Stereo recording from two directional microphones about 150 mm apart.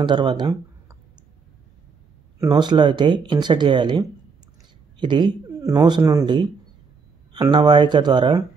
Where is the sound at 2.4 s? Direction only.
30° right (ahead or behind).